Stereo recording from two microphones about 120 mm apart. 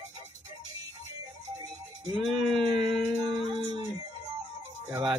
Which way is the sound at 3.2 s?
40° right (ahead or behind).